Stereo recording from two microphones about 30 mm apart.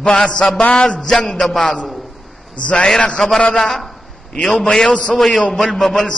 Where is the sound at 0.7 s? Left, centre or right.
Left.